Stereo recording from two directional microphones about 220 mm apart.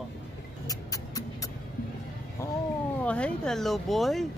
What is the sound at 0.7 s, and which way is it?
Music, 15° left (ahead or behind).